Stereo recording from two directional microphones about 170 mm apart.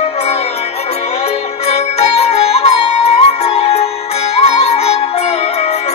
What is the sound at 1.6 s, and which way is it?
Music, 40° left (ahead or behind).